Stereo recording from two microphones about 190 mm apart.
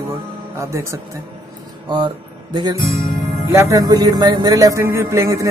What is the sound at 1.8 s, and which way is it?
Speech, 25° right (ahead or behind).